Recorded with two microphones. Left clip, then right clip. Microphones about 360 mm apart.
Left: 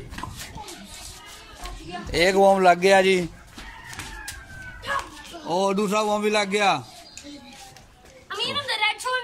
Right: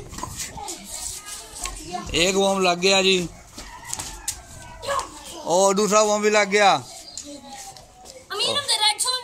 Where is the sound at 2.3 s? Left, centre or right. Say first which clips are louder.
Left 6 dB; left.